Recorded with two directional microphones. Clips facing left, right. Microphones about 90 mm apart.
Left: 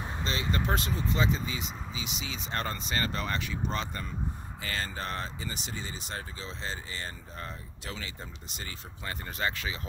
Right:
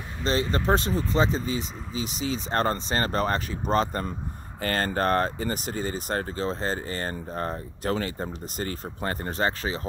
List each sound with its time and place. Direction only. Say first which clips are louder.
0.2 s speech: right 7 dB; 35° right (ahead or behind)